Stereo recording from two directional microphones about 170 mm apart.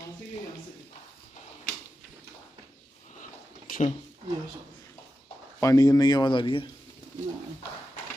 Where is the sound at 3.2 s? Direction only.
50° left (ahead or behind).